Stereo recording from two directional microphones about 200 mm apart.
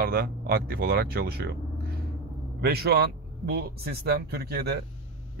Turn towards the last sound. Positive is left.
turn(degrees=-55)  # may be behind; listen again after turning